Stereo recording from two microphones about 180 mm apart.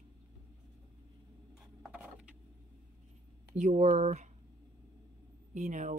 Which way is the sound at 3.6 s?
40° right (ahead or behind).